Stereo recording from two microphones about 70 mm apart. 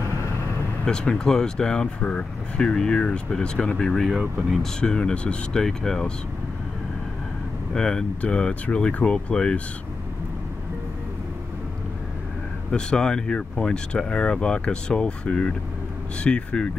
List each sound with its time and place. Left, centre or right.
0.8 s speech: centre
4.1 s speech: centre
4.7 s speech: centre
7.7 s speech: centre
12.7 s speech: centre